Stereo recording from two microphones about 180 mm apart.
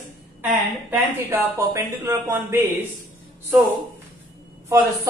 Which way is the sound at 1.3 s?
15° right (ahead or behind).